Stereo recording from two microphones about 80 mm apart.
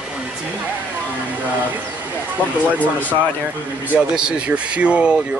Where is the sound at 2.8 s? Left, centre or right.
Left.